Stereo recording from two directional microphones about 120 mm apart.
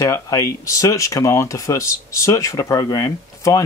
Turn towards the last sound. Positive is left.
turn(degrees=25)  # may be behind; listen again after turning